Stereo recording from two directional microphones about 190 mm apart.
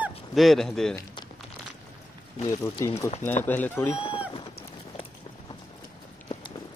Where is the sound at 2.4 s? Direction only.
15° left (ahead or behind).